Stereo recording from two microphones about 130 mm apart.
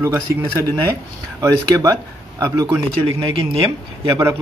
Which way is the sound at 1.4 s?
25° right (ahead or behind).